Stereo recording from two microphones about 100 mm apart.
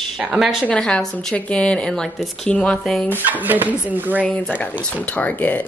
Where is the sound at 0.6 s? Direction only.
10° left (ahead or behind).